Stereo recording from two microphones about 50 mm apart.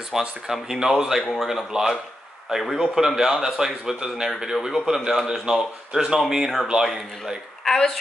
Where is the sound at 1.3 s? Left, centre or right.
Centre.